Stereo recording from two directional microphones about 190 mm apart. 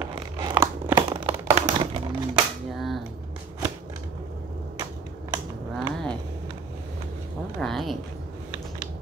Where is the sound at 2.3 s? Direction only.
Centre (ahead or behind).